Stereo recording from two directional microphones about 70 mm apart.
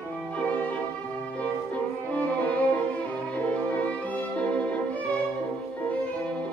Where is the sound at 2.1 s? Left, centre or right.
Left.